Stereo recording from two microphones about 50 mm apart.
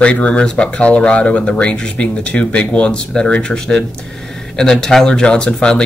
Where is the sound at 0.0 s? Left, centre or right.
Left.